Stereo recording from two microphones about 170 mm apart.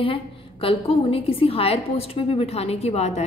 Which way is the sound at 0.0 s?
30° left (ahead or behind).